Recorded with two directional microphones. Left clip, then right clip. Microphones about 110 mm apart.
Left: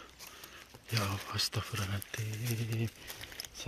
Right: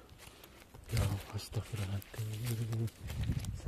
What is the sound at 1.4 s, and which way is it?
Speech, 5° left (ahead or behind).